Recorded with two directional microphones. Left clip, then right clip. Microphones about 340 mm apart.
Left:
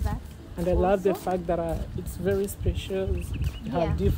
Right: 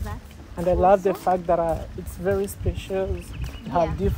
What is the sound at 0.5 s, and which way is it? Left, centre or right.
Speech, centre.